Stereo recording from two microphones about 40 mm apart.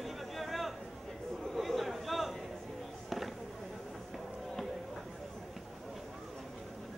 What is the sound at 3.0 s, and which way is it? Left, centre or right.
Fireworks, centre.